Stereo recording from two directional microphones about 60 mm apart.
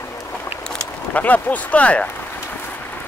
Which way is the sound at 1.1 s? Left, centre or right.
Left.